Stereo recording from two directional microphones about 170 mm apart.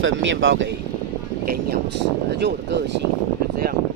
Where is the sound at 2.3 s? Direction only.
85° right.